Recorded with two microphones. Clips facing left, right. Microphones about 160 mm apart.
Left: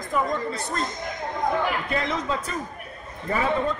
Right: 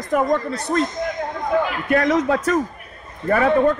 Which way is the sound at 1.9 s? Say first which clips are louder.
Right 9 dB; 80° right.